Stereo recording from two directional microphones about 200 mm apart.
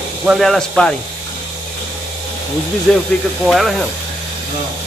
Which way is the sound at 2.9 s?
Centre (ahead or behind).